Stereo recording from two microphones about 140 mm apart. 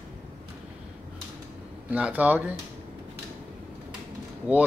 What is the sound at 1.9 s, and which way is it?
Speech, 10° right (ahead or behind).